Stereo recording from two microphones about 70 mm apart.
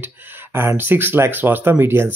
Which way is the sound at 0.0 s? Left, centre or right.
Right.